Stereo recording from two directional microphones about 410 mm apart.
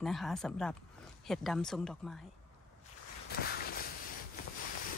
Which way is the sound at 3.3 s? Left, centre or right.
Left.